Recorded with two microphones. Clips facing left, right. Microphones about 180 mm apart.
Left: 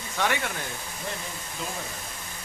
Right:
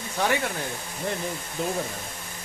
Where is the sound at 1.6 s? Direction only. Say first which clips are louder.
Right 8 dB; 55° right (ahead or behind).